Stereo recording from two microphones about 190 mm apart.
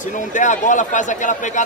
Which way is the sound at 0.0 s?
40° left (ahead or behind).